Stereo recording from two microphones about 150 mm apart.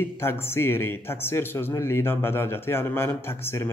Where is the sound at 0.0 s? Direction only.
15° left (ahead or behind).